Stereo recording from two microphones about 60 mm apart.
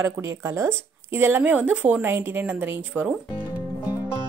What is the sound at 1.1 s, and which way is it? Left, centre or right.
Speech, right.